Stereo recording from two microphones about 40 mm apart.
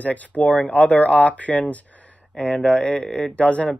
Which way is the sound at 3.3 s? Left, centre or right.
Left.